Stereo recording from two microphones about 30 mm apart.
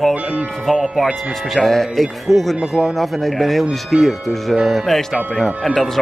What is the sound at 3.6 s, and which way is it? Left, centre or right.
Speech, centre.